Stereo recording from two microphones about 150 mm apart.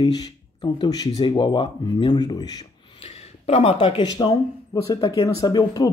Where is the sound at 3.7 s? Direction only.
30° left (ahead or behind).